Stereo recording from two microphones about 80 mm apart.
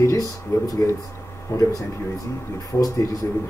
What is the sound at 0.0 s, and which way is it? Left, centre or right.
Speech, left.